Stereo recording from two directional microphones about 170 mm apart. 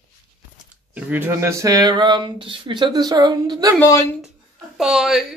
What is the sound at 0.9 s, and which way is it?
Speech, 10° right (ahead or behind).